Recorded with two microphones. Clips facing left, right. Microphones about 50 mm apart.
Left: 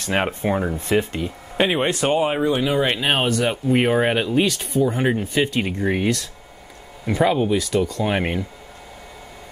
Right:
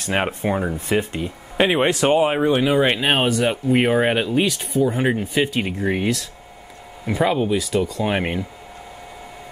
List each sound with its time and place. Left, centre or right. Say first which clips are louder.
0.2 s speech: even; centre
1.6 s speech: right 2 dB; right
2.6 s speech: right 2 dB; centre